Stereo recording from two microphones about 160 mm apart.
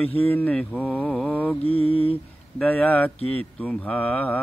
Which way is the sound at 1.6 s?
35° left (ahead or behind).